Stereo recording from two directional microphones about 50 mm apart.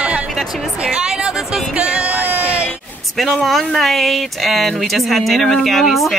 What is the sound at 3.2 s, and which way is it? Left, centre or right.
Speech, centre.